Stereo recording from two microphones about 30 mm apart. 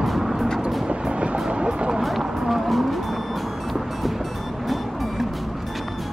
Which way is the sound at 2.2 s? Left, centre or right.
Centre.